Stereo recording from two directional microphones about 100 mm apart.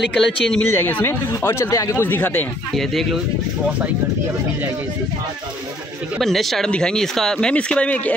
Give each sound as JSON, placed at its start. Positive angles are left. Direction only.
{"t": 0.2, "sound": "speech", "side_deg": 5}
{"t": 0.7, "sound": "speech", "side_deg": 20}
{"t": 2.0, "sound": "speech", "side_deg": 20}
{"t": 2.7, "sound": "speech", "side_deg": 5}
{"t": 6.1, "sound": "speech", "side_deg": 0}